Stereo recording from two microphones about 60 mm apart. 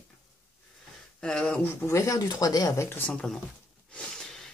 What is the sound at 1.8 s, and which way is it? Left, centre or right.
Speech, left.